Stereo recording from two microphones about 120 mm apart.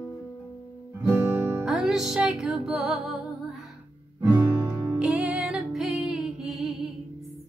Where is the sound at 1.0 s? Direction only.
25° right (ahead or behind).